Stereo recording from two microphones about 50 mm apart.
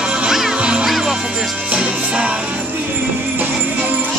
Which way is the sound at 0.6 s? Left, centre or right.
Right.